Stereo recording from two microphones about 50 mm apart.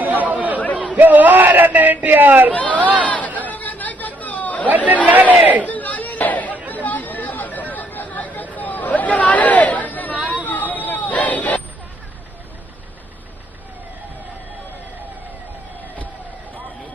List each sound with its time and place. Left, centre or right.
0.0 s chatter: right
0.9 s speech: right
2.5 s speech: left
3.4 s chatter: left
4.6 s speech: right
5.7 s chatter: left
10.2 s a sound: left